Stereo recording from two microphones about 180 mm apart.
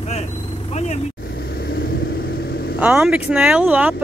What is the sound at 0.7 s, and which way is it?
Speech, 40° left (ahead or behind).